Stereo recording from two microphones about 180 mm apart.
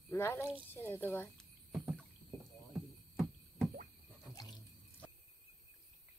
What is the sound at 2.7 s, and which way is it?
Heart sounds, centre (ahead or behind).